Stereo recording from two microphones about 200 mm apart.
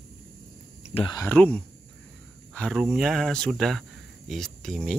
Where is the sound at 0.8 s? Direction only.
30° left (ahead or behind).